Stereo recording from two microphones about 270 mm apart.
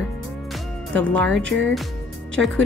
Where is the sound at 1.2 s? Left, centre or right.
Right.